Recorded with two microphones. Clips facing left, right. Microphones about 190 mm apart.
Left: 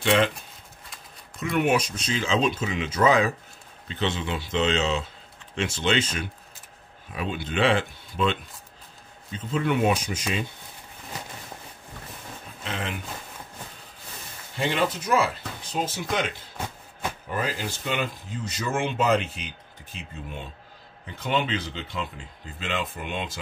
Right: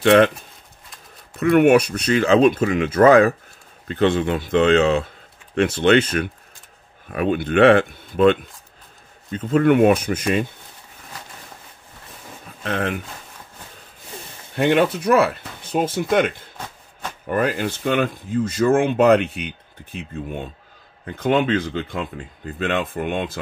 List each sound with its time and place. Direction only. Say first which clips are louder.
0.0 s speech: right 8 dB; 60° right (ahead or behind)
1.4 s speech: right 10 dB; 60° right (ahead or behind)
12.6 s speech: right 9 dB; 55° right (ahead or behind)
14.5 s speech: right 8 dB; 60° right (ahead or behind)
17.3 s speech: right 10 dB; 60° right (ahead or behind)